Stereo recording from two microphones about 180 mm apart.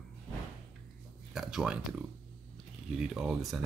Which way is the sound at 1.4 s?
5° right (ahead or behind).